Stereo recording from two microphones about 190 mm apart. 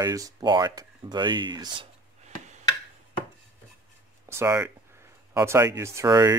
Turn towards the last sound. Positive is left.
turn(degrees=-20)  # may be behind; listen again after turning